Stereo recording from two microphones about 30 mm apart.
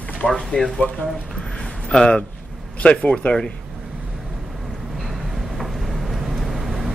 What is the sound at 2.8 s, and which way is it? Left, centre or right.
Speech, left.